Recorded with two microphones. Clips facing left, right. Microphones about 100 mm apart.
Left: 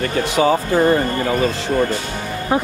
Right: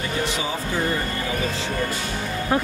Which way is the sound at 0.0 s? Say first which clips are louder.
Left 9 dB; 60° left (ahead or behind).